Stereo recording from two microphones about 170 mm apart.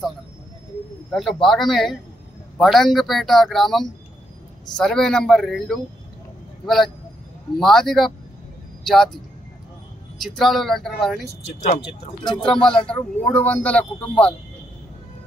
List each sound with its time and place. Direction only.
1.1 s speech: centre (ahead or behind)
10.2 s speech: centre (ahead or behind)
11.4 s speech: 40° left (ahead or behind)
12.4 s a man's voice: 5° left (ahead or behind)